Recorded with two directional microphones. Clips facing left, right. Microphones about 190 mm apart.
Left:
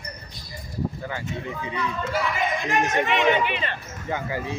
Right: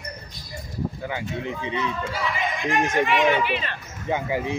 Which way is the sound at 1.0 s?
20° right (ahead or behind).